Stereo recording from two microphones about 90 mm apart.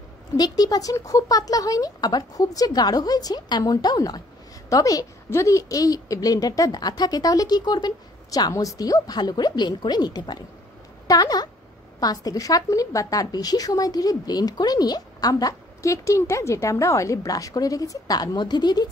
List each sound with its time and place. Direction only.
0.4 s a woman's voice: 45° left (ahead or behind)